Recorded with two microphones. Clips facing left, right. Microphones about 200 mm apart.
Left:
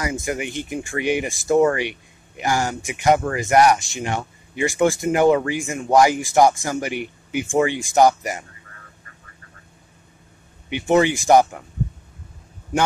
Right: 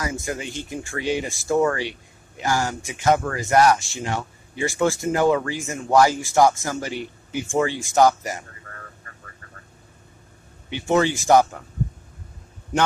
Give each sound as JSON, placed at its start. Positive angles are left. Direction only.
{"t": 0.0, "sound": "speech", "side_deg": 15}
{"t": 10.7, "sound": "speech", "side_deg": 15}